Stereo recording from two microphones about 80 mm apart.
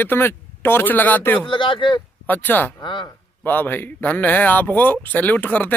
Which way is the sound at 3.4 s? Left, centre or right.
Left.